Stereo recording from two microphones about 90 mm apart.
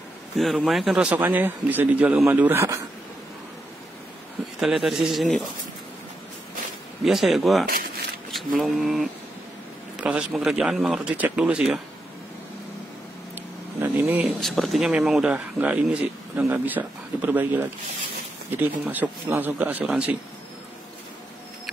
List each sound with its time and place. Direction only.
0.3 s speech: centre (ahead or behind)
0.9 s speech: 15° right (ahead or behind)
4.6 s speech: 5° right (ahead or behind)
7.1 s speech: 5° right (ahead or behind)
9.9 s a sound: 15° right (ahead or behind)
10.3 s speech: 5° right (ahead or behind)
13.3 s a sound: 25° right (ahead or behind)
14.2 s speech: centre (ahead or behind)
15.3 s speech: 15° right (ahead or behind)